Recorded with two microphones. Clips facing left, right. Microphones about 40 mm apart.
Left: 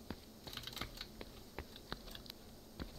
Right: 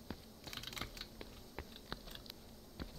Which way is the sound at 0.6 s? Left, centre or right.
Centre.